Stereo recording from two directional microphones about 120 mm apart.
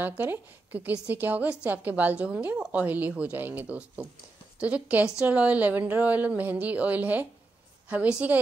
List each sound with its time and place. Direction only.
0.0 s a woman's voice: 15° right (ahead or behind)